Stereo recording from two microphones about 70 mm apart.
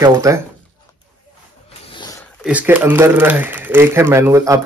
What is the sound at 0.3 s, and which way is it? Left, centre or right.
Speech, right.